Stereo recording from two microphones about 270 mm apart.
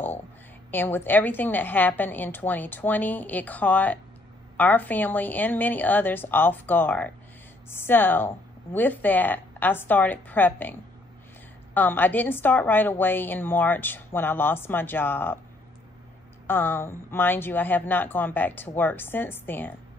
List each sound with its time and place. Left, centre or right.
0.7 s a woman's voice: centre
16.4 s a woman's voice: centre